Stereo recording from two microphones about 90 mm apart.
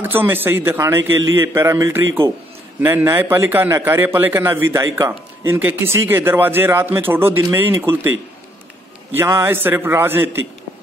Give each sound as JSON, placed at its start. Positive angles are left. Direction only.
{"t": 0.0, "sound": "a man's voice", "side_deg": -25}
{"t": 9.1, "sound": "a man's voice", "side_deg": -30}